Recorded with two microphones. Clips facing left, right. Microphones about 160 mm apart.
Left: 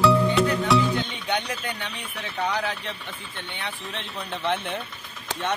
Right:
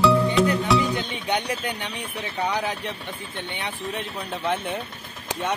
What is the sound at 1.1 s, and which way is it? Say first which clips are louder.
Speech: right 2 dB; 15° right (ahead or behind).